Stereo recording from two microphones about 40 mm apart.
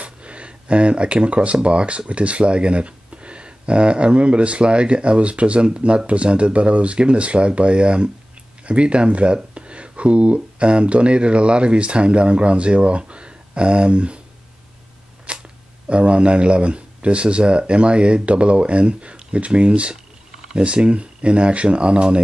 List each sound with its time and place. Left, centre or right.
0.0 s speech: right
15.3 s a sound: right
15.9 s speech: right